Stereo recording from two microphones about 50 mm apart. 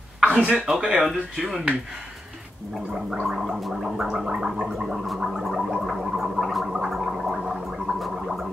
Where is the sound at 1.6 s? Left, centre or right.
Right.